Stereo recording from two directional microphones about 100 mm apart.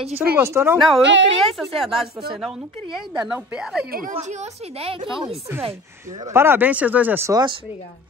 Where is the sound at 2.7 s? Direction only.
60° right (ahead or behind).